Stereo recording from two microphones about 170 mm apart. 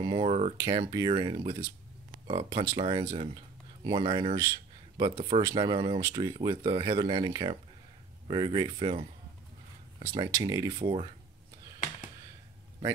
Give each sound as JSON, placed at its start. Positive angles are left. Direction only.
{"t": 0.1, "sound": "speech", "side_deg": -35}
{"t": 0.6, "sound": "speech", "side_deg": -25}
{"t": 10.8, "sound": "speech", "side_deg": -35}